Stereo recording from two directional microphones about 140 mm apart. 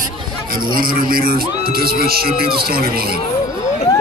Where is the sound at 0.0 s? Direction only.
90° right.